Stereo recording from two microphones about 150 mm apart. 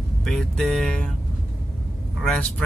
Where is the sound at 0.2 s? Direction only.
5° left (ahead or behind).